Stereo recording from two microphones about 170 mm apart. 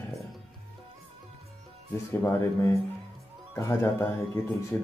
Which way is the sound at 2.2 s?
15° left (ahead or behind).